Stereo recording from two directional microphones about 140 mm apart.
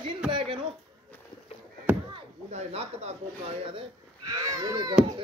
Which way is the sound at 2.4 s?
50° right (ahead or behind).